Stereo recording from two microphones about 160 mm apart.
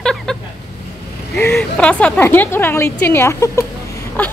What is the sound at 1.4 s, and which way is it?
A woman's voice, 10° left (ahead or behind).